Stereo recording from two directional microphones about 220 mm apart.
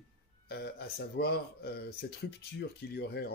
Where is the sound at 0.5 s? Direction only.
45° left (ahead or behind).